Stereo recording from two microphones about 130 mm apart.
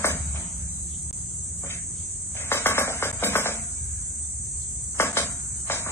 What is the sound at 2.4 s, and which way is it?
Music, 20° left (ahead or behind).